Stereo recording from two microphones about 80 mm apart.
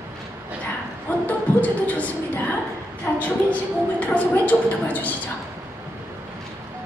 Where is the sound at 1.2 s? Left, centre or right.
Centre.